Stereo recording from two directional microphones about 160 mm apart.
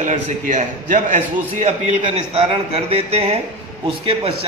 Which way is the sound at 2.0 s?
35° right (ahead or behind).